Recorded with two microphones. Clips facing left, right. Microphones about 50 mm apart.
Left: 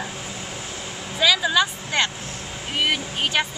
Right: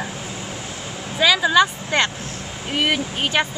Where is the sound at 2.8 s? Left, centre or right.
Centre.